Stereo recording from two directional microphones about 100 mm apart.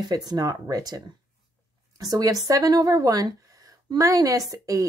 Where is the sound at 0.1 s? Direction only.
40° right (ahead or behind).